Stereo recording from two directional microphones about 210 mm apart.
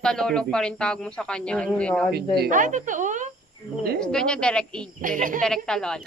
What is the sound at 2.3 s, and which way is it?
Speech, 45° right (ahead or behind).